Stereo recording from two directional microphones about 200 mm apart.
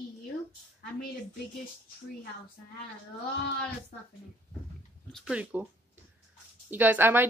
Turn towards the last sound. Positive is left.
turn(degrees=-10)  # may be behind; listen again after turning